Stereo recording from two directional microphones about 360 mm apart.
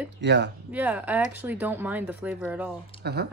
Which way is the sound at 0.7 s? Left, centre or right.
Centre.